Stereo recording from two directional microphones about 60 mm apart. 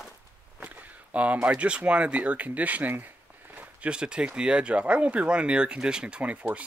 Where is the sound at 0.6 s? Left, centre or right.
Right.